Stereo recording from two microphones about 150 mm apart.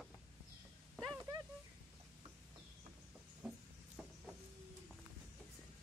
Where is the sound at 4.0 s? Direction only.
5° left (ahead or behind).